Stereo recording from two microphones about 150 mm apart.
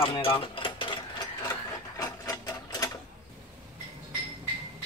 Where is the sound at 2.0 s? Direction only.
25° left (ahead or behind).